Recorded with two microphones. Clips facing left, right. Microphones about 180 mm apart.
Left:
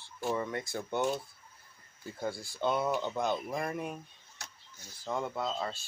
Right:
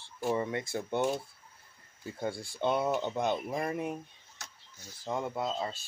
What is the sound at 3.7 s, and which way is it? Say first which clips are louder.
Speech: right 3 dB; 10° right (ahead or behind).